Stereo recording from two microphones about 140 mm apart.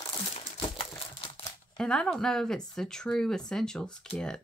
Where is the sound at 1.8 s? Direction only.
5° left (ahead or behind).